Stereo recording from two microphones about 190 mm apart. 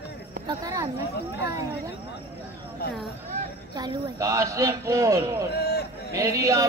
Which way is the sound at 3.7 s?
20° right (ahead or behind).